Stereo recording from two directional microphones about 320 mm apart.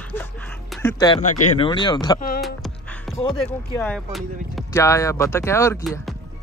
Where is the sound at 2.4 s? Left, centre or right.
Centre.